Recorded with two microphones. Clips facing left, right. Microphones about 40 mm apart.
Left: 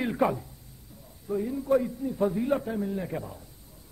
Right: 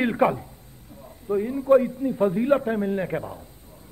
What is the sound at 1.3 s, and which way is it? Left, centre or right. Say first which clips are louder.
A man's voice: right 7 dB; right.